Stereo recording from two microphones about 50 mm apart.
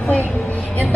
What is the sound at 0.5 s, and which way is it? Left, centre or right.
Speech, left.